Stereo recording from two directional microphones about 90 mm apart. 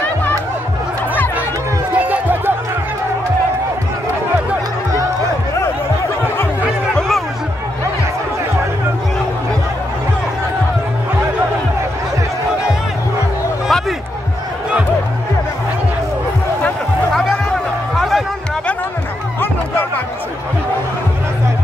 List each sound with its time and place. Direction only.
2.0 s music: 20° right (ahead or behind)
7.0 s music: centre (ahead or behind)
13.7 s a sound: centre (ahead or behind)
17.1 s music: 5° left (ahead or behind)